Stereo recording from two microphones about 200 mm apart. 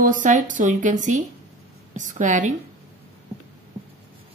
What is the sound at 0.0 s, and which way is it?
Speech, 40° right (ahead or behind).